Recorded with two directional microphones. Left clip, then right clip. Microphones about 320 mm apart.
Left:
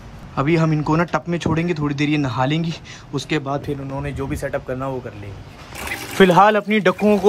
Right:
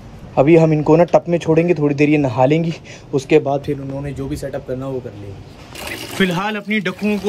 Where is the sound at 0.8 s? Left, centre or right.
Left.